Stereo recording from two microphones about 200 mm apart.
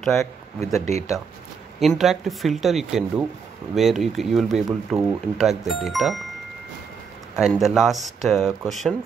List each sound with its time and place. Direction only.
0.8 s speech: 35° right (ahead or behind)
1.8 s speech: centre (ahead or behind)
7.3 s speech: centre (ahead or behind)